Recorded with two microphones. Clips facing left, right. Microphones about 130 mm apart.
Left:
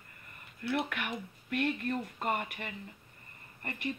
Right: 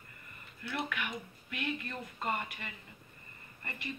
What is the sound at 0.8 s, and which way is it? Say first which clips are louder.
Speech: left 1 dB; 55° left (ahead or behind).